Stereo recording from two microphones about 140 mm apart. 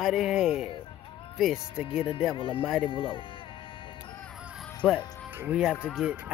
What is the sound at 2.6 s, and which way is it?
Speech, centre (ahead or behind).